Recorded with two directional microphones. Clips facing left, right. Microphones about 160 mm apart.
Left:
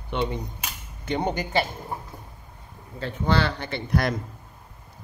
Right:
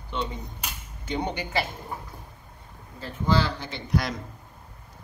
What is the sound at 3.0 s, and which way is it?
Speech, 65° left (ahead or behind).